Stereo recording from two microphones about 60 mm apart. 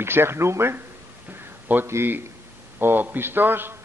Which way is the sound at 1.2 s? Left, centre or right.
Right.